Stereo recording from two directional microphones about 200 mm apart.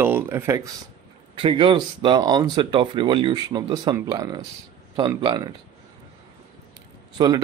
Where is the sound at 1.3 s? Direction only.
25° right (ahead or behind).